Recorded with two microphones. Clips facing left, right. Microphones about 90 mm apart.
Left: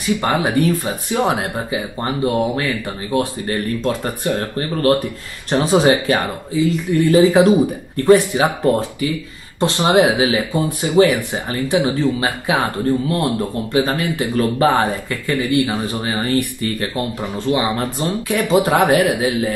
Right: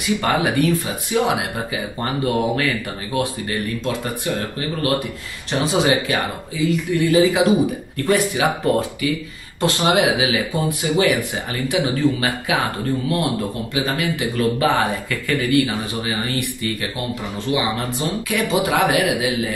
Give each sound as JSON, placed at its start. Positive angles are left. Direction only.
{"t": 0.0, "sound": "a man's voice", "side_deg": 30}
{"t": 2.0, "sound": "speech", "side_deg": 25}
{"t": 3.1, "sound": "a man's voice", "side_deg": 35}
{"t": 13.7, "sound": "a man's voice", "side_deg": 40}
{"t": 15.9, "sound": "a man's voice", "side_deg": 40}